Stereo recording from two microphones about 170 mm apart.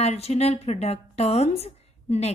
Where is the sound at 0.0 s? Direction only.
40° left (ahead or behind).